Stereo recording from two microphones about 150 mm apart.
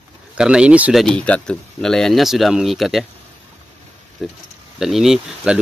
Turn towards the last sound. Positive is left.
turn(degrees=0)  # may be behind; listen again after turning